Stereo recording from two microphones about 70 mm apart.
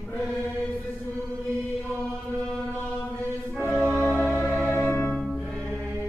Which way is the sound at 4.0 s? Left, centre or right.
Left.